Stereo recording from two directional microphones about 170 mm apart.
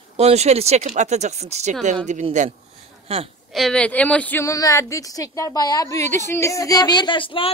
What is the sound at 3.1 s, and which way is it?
Speech, 35° right (ahead or behind).